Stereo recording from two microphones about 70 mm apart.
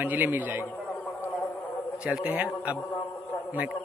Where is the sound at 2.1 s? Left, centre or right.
Right.